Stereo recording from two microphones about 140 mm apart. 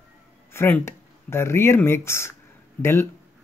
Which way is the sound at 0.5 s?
15° left (ahead or behind).